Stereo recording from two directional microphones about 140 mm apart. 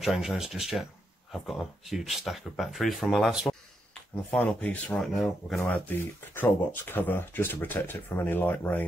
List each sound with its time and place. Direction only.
0.0 s speech: 5° right (ahead or behind)
4.3 s speech: 10° left (ahead or behind)
5.6 s speech: 15° left (ahead or behind)